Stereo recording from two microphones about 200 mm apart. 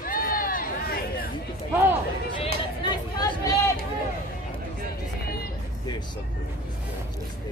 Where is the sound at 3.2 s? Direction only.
15° left (ahead or behind).